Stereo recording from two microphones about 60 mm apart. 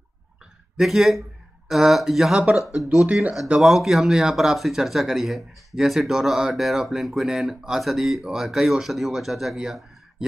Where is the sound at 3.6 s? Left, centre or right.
Centre.